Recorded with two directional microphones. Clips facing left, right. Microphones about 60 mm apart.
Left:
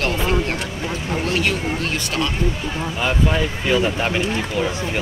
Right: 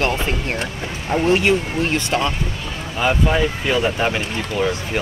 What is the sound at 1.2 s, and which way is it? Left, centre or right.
Speech, right.